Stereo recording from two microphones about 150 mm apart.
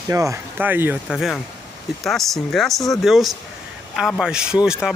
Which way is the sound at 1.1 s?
Centre (ahead or behind).